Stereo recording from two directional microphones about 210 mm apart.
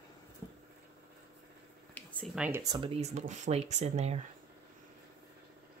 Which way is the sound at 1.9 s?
5° left (ahead or behind).